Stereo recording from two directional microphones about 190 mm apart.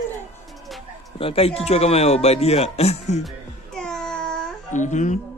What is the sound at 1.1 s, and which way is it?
Speech, 30° left (ahead or behind).